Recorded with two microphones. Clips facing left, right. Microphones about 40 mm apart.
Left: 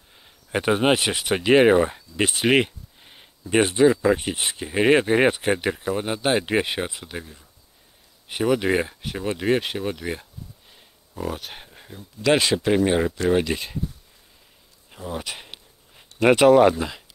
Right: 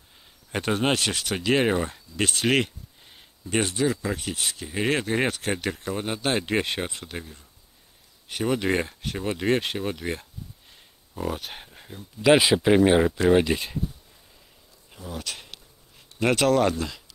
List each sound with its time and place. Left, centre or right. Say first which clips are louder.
0.5 s speech: left 5 dB; centre
12.2 s speech: right 2 dB; centre
14.9 s a sound: left 4 dB; centre
16.2 s speech: left 7 dB; centre